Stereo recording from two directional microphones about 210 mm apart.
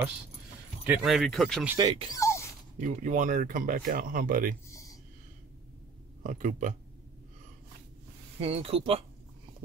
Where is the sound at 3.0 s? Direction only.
35° right (ahead or behind).